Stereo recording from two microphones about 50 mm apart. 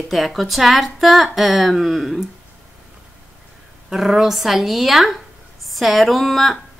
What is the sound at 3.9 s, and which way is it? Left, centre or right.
Speech, centre.